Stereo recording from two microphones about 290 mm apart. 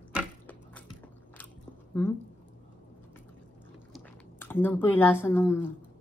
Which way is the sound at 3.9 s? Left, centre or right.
Centre.